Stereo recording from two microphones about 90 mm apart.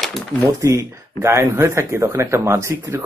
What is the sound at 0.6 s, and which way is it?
Speech, 30° right (ahead or behind).